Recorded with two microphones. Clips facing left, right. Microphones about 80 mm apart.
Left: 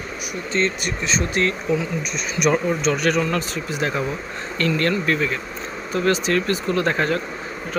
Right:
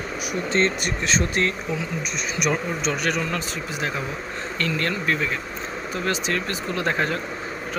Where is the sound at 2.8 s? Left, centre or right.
Centre.